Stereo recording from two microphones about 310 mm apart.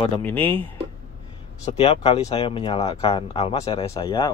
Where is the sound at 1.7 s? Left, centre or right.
Centre.